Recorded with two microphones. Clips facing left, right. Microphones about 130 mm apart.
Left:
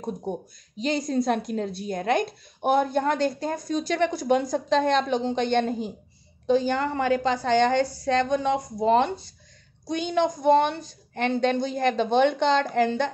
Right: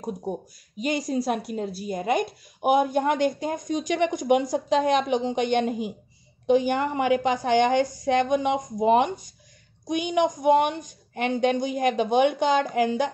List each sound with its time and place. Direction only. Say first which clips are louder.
0.0 s a woman's voice: even; 10° right (ahead or behind)